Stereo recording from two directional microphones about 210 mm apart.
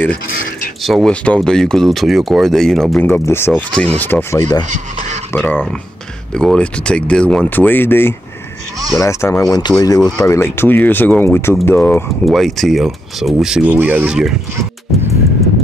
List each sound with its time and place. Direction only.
0.8 s speech: centre (ahead or behind)
4.6 s speech: 35° right (ahead or behind)
5.3 s speech: 10° left (ahead or behind)